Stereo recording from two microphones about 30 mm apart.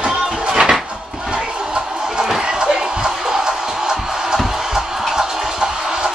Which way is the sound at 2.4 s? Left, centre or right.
Right.